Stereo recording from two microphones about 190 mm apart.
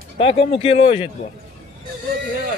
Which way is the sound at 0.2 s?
30° left (ahead or behind).